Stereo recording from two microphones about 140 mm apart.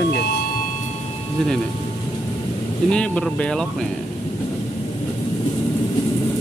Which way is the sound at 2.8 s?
5° left (ahead or behind).